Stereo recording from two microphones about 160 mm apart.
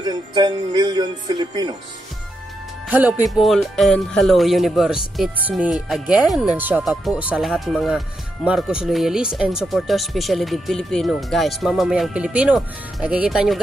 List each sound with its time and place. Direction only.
0.0 s speech: 25° right (ahead or behind)
2.9 s speech: 10° right (ahead or behind)